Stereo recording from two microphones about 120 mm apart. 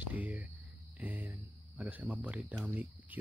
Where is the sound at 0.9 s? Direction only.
15° right (ahead or behind).